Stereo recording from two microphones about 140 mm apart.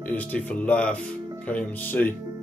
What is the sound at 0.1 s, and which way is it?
Speech, 10° left (ahead or behind).